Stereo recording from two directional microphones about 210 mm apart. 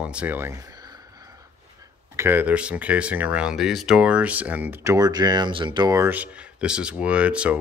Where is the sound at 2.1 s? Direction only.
10° right (ahead or behind).